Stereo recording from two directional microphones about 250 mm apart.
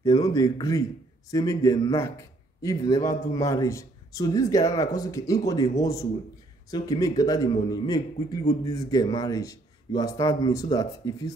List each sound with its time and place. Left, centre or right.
0.0 s a man's voice: centre